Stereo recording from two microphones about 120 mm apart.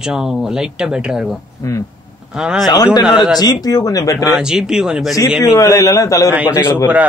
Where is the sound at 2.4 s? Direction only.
5° right (ahead or behind).